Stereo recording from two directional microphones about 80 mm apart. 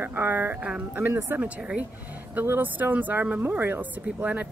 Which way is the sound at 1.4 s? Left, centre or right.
Centre.